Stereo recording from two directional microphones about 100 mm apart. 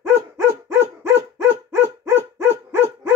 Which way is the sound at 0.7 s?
25° right (ahead or behind).